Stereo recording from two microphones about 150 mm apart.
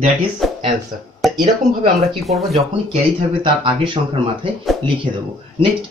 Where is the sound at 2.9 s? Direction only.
40° right (ahead or behind).